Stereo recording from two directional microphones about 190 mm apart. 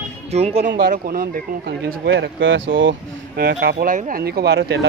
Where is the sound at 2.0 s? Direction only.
70° right (ahead or behind).